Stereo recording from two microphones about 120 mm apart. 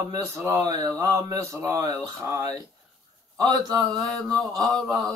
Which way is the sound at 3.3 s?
35° right (ahead or behind).